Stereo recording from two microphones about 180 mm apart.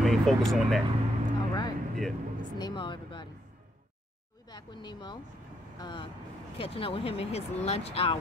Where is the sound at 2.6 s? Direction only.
25° left (ahead or behind).